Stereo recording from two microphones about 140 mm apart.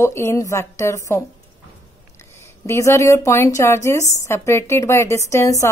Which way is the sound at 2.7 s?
20° left (ahead or behind).